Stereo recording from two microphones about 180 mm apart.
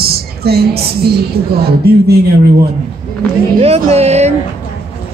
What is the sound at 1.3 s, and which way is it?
Speech, 60° right (ahead or behind).